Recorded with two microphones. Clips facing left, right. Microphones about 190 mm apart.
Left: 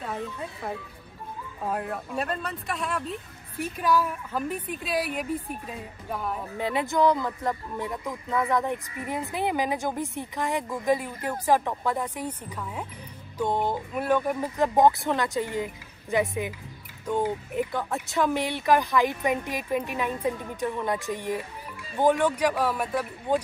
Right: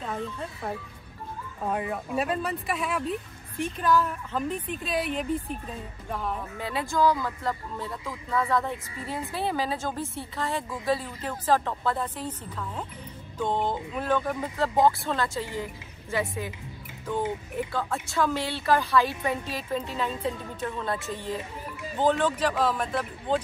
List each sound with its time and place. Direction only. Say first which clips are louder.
0.0 s speech: even; 5° left (ahead or behind)
6.6 s speech: left 2 dB; 20° left (ahead or behind)
17.6 s speech: left 1 dB; 20° left (ahead or behind)